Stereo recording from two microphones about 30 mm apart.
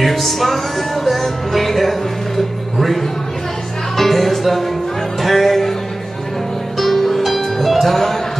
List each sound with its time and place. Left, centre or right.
0.0 s music: centre
6.8 s music: centre